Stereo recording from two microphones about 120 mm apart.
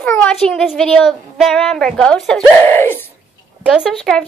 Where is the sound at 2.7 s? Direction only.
20° left (ahead or behind).